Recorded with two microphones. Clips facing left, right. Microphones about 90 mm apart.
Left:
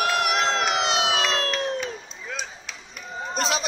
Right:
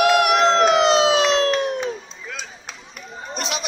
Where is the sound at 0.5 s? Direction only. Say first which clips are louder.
Right 8 dB; 40° right (ahead or behind).